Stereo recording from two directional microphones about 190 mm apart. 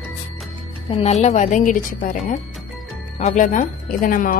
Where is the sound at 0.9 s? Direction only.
35° left (ahead or behind).